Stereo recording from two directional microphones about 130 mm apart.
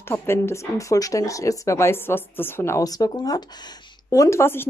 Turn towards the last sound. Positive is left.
turn(degrees=20)  # may be behind; listen again after turning